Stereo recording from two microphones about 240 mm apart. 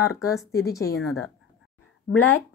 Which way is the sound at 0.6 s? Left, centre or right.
Centre.